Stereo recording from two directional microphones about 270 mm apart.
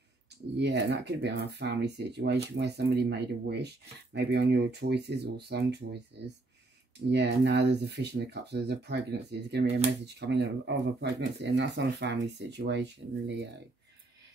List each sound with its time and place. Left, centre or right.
0.6 s speech: right
7.1 s speech: right